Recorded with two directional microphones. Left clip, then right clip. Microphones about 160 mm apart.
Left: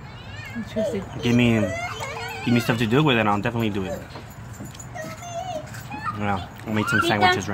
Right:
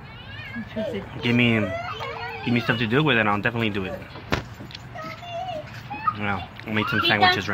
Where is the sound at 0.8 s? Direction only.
35° left (ahead or behind).